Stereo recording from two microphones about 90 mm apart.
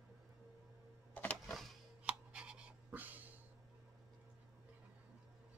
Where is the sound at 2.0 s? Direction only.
10° right (ahead or behind).